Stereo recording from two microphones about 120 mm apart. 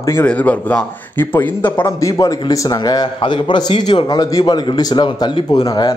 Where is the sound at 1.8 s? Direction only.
30° left (ahead or behind).